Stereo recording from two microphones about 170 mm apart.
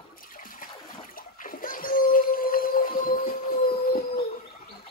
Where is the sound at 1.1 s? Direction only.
55° left (ahead or behind).